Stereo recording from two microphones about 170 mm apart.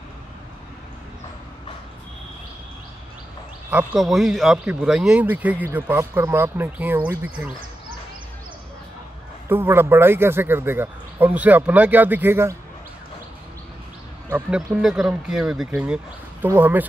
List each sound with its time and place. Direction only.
3.7 s speech: centre (ahead or behind)
9.5 s speech: 15° right (ahead or behind)
14.3 s speech: 10° right (ahead or behind)